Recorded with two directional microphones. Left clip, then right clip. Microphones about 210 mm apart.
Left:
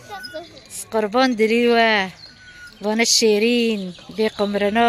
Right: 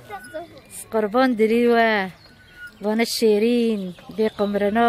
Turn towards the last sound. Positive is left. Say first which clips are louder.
# left 2 dB
turn(degrees=0)  # may be behind; listen again after turning